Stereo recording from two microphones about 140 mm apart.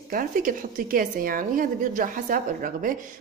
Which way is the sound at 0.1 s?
75° right (ahead or behind).